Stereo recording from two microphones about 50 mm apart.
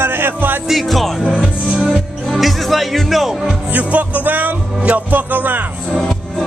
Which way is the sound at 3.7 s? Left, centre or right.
Right.